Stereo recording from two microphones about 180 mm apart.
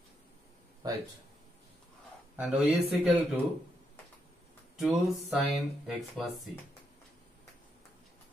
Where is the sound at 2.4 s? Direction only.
5° right (ahead or behind).